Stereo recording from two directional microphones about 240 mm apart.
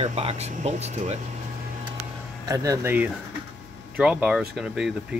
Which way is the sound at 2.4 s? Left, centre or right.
Centre.